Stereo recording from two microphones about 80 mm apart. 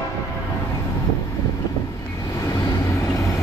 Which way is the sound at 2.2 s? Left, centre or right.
Left.